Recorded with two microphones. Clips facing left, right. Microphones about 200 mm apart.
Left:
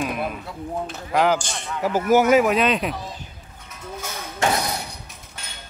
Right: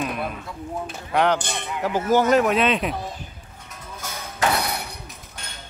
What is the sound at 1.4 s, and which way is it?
Speech, 60° right (ahead or behind).